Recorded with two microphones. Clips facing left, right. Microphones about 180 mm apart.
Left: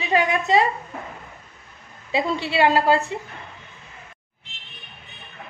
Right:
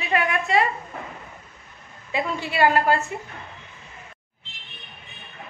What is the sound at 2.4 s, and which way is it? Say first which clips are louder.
Speech: even; 25° left (ahead or behind).